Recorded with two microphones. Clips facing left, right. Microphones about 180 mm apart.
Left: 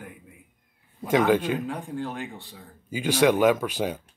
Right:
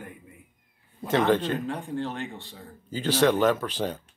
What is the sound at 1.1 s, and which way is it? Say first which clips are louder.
Speech: left 2 dB; 10° left (ahead or behind).